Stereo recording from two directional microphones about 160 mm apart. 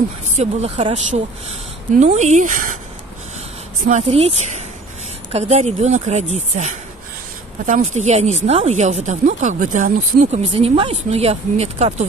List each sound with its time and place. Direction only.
0.4 s speech: 40° right (ahead or behind)
4.0 s speech: 40° right (ahead or behind)